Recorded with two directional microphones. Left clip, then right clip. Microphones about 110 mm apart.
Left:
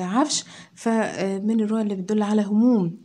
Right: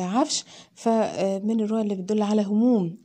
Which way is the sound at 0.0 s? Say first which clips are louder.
Left 1 dB; 50° right (ahead or behind).